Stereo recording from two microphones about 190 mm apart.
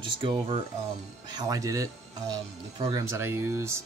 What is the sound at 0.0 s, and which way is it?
Speech, 25° right (ahead or behind).